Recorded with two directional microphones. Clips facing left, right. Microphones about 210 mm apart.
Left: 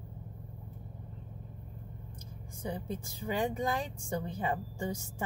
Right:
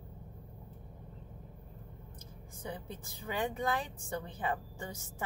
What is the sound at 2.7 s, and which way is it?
Speech, 15° left (ahead or behind).